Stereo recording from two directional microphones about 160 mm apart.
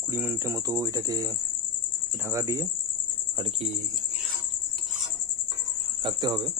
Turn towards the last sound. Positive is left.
turn(degrees=-25)  # may be behind; listen again after turning